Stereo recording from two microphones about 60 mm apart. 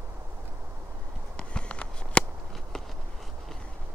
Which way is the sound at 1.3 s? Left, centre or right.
Centre.